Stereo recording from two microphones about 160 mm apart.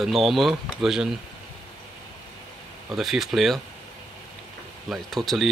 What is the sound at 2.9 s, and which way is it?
Speech, centre (ahead or behind).